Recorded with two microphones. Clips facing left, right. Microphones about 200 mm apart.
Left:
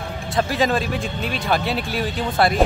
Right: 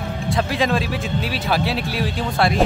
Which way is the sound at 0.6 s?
Centre (ahead or behind).